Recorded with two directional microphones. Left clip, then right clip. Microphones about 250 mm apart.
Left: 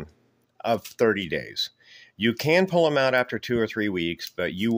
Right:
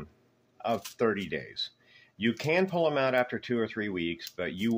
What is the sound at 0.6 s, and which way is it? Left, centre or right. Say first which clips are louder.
Speech: left 6 dB; left.